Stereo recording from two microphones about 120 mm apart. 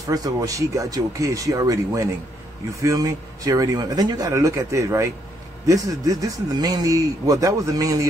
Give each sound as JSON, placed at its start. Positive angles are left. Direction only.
{"t": 0.0, "sound": "speech", "side_deg": -30}